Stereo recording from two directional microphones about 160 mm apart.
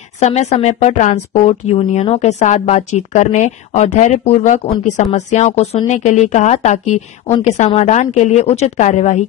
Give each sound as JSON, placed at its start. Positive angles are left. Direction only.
{"t": 0.2, "sound": "speech", "side_deg": 45}
{"t": 1.4, "sound": "speech", "side_deg": 40}